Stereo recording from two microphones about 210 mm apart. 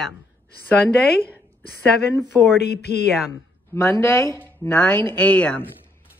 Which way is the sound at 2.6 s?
50° left (ahead or behind).